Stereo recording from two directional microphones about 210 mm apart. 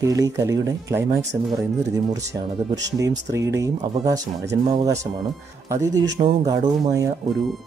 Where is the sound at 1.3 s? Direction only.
30° right (ahead or behind).